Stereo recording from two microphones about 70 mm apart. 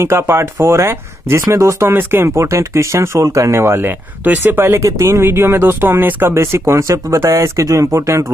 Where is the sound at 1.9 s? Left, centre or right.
Right.